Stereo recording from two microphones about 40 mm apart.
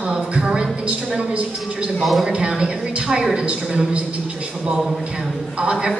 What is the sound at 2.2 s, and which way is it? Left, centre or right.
A man's voice, centre.